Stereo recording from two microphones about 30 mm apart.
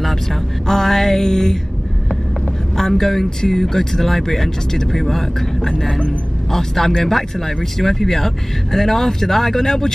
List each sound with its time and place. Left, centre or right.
0.7 s music: centre
2.8 s speech: centre